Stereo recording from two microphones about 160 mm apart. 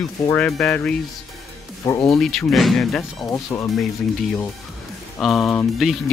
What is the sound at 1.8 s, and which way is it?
Speech, 20° left (ahead or behind).